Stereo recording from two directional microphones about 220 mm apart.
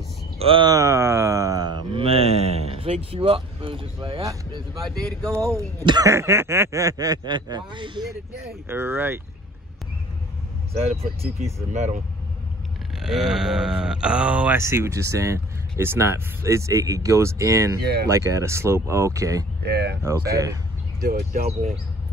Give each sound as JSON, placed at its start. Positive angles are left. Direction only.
{"t": 0.4, "sound": "speech", "side_deg": -25}
{"t": 4.8, "sound": "speech", "side_deg": 5}
{"t": 5.3, "sound": "speech", "side_deg": -10}
{"t": 8.6, "sound": "speech", "side_deg": -10}
{"t": 11.0, "sound": "speech", "side_deg": -30}
{"t": 13.0, "sound": "speech", "side_deg": 0}
{"t": 17.7, "sound": "speech", "side_deg": -45}
{"t": 18.0, "sound": "speech", "side_deg": -15}
{"t": 19.6, "sound": "speech", "side_deg": -50}
{"t": 20.0, "sound": "speech", "side_deg": -15}
{"t": 21.0, "sound": "speech", "side_deg": -40}